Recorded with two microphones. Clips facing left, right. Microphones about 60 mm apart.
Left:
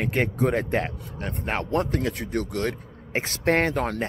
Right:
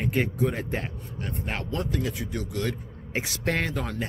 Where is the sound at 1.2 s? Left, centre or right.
Left.